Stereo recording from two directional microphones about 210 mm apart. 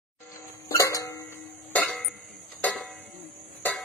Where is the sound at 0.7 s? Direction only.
15° left (ahead or behind).